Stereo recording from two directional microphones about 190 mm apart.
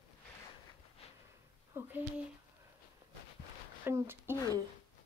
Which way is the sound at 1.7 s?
10° right (ahead or behind).